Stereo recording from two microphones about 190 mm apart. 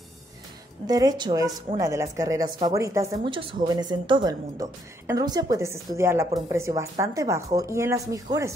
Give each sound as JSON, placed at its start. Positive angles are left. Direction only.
{"t": 0.8, "sound": "a woman's voice", "side_deg": -20}
{"t": 3.3, "sound": "speech", "side_deg": -25}